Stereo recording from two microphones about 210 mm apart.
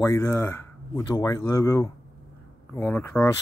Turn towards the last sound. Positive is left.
turn(degrees=10)  # may be behind; listen again after turning